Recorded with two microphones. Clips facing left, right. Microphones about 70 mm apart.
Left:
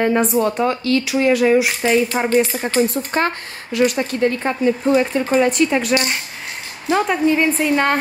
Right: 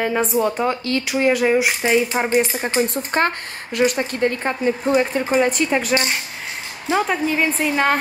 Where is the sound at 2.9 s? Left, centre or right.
Right.